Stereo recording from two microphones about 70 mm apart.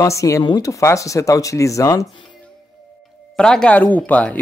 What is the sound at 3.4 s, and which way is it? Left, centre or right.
Speech, centre.